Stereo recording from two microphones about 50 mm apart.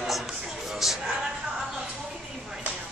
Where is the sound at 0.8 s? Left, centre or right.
Centre.